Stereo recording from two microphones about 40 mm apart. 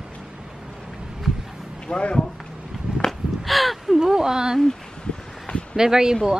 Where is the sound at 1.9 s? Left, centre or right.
Left.